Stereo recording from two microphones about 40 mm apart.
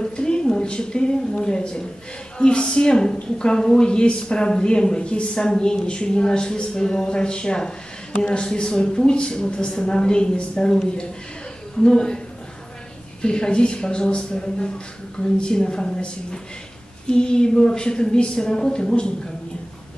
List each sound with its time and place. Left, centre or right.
0.0 s a woman's voice: left
11.8 s speech: centre
13.2 s a woman's voice: left